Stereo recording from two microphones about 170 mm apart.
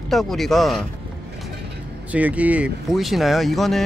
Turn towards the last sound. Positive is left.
turn(degrees=0)  # may be behind; listen again after turning